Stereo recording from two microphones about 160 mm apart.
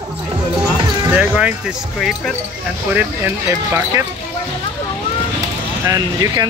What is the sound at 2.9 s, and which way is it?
Speech, 15° right (ahead or behind).